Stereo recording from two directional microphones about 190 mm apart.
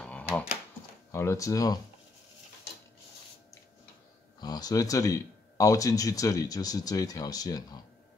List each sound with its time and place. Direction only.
1.1 s speech: 15° left (ahead or behind)
4.4 s speech: 20° left (ahead or behind)